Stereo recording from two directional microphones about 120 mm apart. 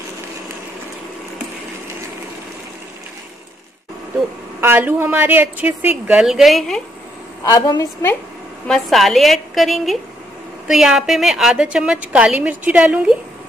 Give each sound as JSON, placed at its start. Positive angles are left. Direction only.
{"t": 4.6, "sound": "a woman's voice", "side_deg": -15}
{"t": 7.4, "sound": "a woman's voice", "side_deg": 35}
{"t": 8.6, "sound": "a woman's voice", "side_deg": 0}